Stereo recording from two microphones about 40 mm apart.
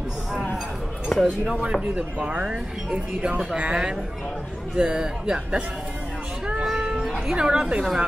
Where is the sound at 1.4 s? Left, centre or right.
Right.